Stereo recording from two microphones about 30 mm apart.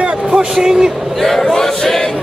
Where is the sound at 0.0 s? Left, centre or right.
Right.